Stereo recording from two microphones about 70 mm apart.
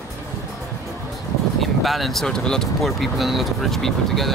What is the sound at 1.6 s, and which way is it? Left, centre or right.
Speech, centre.